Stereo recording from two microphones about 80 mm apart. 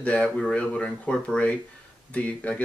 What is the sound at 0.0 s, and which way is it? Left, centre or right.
Speech, centre.